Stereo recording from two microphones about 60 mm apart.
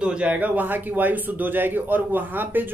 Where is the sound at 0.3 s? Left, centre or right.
Right.